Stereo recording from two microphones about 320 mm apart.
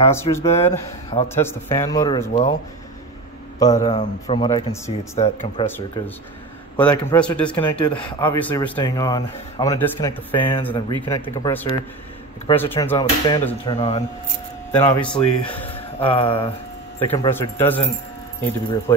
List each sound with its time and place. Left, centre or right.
0.0 s speech: centre
3.5 s speech: centre
5.7 s speech: centre
14.7 s speech: centre
15.7 s speech: centre
17.3 s speech: centre